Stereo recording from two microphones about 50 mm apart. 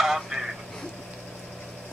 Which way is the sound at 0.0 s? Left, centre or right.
Centre.